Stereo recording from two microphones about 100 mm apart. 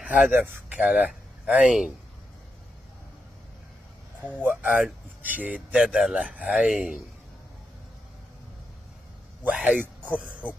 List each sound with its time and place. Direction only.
0.0 s speech: 15° right (ahead or behind)
4.4 s speech: 15° right (ahead or behind)
9.4 s speech: 15° right (ahead or behind)